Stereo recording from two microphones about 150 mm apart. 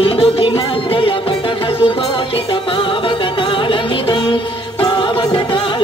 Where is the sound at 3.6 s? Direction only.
30° left (ahead or behind).